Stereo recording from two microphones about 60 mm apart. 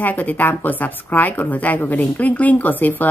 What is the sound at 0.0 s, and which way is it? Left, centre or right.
Speech, left.